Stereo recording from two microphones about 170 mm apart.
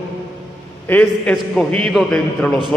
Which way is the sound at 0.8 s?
10° left (ahead or behind).